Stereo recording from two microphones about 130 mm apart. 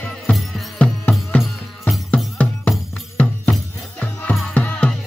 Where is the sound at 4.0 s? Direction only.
15° left (ahead or behind).